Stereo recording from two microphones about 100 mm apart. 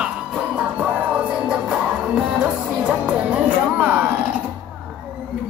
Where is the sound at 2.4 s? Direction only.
15° right (ahead or behind).